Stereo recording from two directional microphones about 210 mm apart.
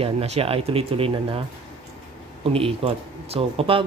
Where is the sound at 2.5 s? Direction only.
25° right (ahead or behind).